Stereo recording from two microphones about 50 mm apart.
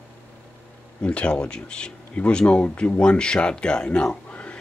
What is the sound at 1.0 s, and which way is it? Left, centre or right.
Speech, left.